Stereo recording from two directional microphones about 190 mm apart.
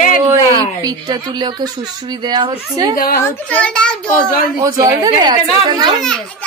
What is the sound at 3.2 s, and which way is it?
Speech, 5° left (ahead or behind).